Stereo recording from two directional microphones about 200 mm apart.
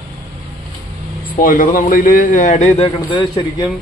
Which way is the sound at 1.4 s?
40° left (ahead or behind).